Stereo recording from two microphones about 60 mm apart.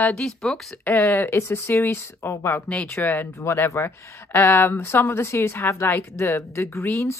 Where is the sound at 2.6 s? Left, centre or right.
Left.